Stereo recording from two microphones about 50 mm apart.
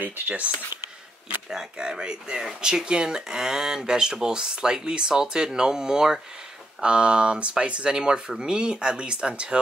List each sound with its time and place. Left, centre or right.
1.5 s speech: centre